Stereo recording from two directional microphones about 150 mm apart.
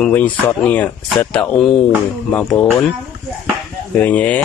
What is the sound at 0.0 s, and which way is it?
Speech, 10° left (ahead or behind).